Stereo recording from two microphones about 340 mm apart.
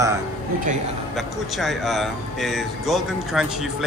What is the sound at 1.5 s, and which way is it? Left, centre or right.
Speech, centre.